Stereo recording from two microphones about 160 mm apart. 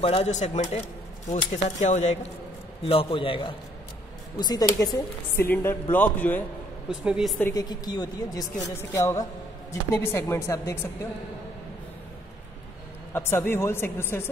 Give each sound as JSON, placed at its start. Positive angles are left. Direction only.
{"t": 0.0, "sound": "speech", "side_deg": 40}
{"t": 2.8, "sound": "a man's voice", "side_deg": 35}
{"t": 5.5, "sound": "a woman's voice", "side_deg": 15}
{"t": 6.9, "sound": "a woman's voice", "side_deg": -5}
{"t": 7.5, "sound": "a woman's voice", "side_deg": 25}
{"t": 13.1, "sound": "a woman's voice", "side_deg": 15}